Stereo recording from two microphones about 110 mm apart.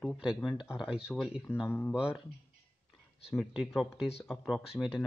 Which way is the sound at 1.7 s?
20° left (ahead or behind).